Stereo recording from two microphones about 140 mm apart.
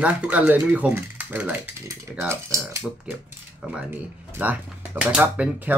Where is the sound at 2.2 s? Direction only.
20° right (ahead or behind).